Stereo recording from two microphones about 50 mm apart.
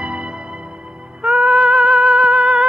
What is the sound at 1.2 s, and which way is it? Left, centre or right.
Music, centre.